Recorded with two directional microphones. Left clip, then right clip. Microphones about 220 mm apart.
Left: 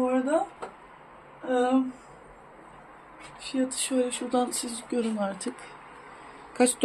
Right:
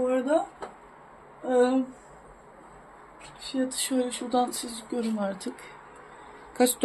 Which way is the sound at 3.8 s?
5° right (ahead or behind).